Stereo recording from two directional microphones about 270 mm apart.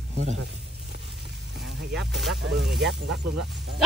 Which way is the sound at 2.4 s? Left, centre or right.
Right.